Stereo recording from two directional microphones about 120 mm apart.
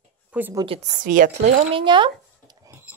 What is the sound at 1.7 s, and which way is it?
Speech, 40° right (ahead or behind).